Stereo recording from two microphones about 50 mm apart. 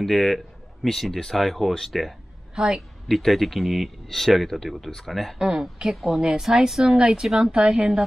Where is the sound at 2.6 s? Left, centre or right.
Centre.